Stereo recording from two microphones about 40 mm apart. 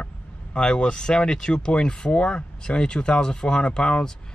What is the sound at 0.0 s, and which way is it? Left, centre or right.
Speech, left.